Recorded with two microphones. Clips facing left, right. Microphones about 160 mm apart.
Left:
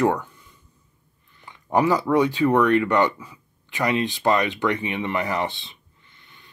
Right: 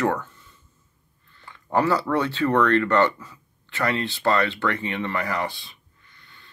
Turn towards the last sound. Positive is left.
turn(degrees=20)  # may be behind; listen again after turning